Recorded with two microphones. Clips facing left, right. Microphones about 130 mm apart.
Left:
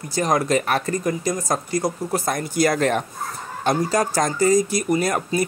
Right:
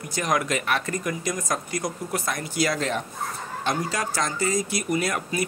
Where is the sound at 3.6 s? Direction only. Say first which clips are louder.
Left 7 dB; 40° left (ahead or behind).